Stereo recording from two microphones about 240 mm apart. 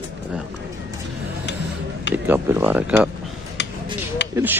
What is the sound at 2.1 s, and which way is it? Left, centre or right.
Speech, centre.